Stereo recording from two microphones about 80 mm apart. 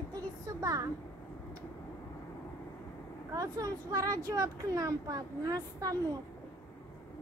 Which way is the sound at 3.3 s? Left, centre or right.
Right.